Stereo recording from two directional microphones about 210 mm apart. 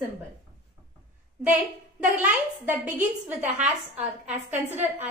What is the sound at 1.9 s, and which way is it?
A woman's voice, 5° right (ahead or behind).